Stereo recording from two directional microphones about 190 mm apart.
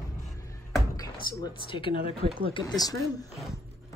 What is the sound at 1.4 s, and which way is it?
Speech, 25° left (ahead or behind).